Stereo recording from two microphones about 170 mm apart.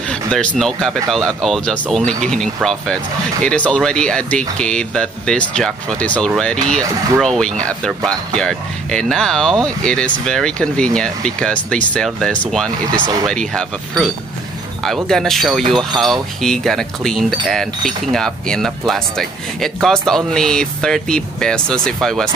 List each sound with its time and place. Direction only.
0.1 s a sound: 5° left (ahead or behind)
0.6 s speech: centre (ahead or behind)
13.0 s speech: 20° right (ahead or behind)
13.3 s speech: 5° left (ahead or behind)